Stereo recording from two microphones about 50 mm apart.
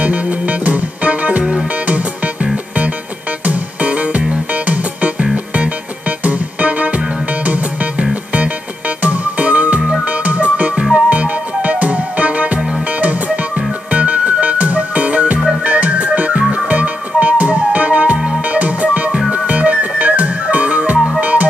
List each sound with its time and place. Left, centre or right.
0.0 s music: right
1.4 s music: centre
1.9 s music: right
13.8 s music: right